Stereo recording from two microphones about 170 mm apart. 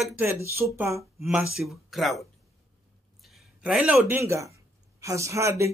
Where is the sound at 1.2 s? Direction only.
Centre (ahead or behind).